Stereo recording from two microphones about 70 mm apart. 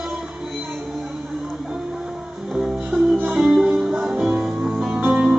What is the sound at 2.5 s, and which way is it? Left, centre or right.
Music, centre.